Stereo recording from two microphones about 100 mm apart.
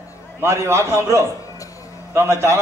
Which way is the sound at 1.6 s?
35° left (ahead or behind).